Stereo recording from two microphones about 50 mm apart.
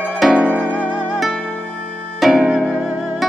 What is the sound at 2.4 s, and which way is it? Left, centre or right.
Music, centre.